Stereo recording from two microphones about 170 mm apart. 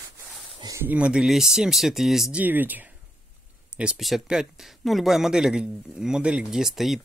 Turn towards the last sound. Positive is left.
turn(degrees=0)  # may be behind; listen again after turning